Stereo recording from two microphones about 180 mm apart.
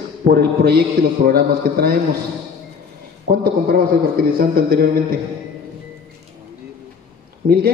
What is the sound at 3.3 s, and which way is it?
A man's voice, 55° right (ahead or behind).